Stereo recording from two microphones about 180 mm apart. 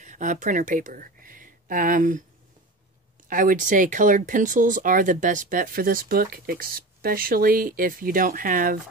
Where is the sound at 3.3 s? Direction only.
50° right (ahead or behind).